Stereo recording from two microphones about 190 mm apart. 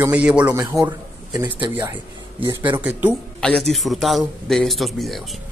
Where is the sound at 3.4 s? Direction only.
Centre (ahead or behind).